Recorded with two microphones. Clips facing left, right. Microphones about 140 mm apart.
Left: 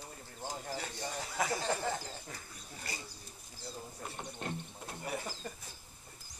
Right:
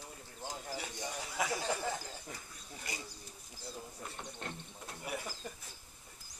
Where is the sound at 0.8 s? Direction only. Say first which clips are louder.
Left 2 dB; 15° right (ahead or behind).